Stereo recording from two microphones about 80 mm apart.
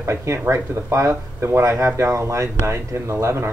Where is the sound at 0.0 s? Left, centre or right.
Right.